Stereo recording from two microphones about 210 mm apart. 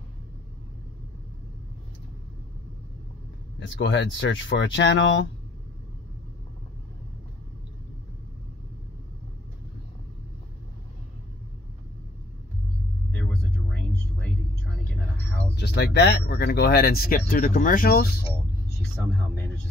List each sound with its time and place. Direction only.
3.5 s speech: 60° left (ahead or behind)
13.1 s a sound: 5° left (ahead or behind)
15.5 s speech: 50° left (ahead or behind)